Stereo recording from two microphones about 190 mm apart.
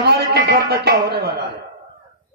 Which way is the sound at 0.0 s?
60° right (ahead or behind).